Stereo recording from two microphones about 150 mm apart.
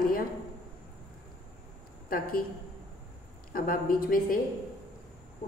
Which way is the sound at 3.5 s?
70° left (ahead or behind).